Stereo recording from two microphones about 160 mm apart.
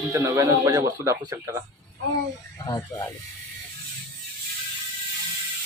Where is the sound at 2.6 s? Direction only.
20° left (ahead or behind).